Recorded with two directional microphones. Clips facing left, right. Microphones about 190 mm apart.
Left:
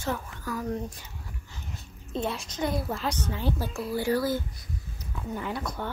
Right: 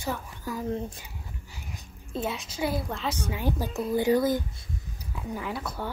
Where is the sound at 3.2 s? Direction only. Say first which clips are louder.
Right 1 dB; 10° right (ahead or behind).